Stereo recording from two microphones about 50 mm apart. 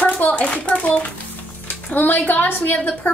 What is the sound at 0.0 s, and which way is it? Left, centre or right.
Hands, left.